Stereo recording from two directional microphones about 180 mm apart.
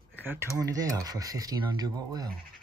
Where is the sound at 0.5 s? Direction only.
20° right (ahead or behind).